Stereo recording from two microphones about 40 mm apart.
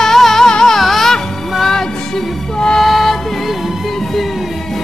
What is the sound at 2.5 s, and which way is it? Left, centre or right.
Music, left.